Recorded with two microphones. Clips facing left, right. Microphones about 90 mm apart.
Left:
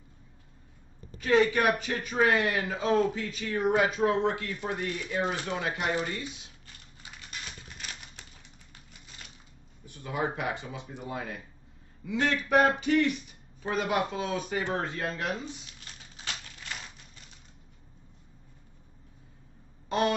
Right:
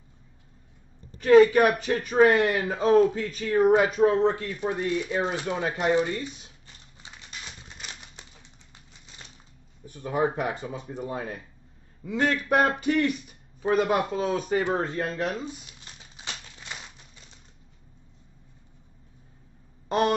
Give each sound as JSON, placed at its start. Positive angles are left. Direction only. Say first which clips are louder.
{"t": 1.2, "sound": "a man's voice", "louder": "right 7 dB", "side_deg": -40}
{"t": 5.7, "sound": "a man's voice", "louder": "right 7 dB", "side_deg": -35}
{"t": 7.7, "sound": "typewriter", "louder": "right 1 dB", "side_deg": -20}
{"t": 9.8, "sound": "a man's voice", "louder": "right 6 dB", "side_deg": -40}
{"t": 15.8, "sound": "crumpling", "louder": "even", "side_deg": -20}
{"t": 19.9, "sound": "a sound", "louder": "right 3 dB", "side_deg": -40}